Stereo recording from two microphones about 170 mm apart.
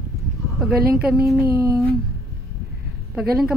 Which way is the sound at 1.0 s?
Centre (ahead or behind).